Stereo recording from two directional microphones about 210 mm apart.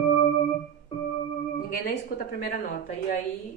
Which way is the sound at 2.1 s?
45° left (ahead or behind).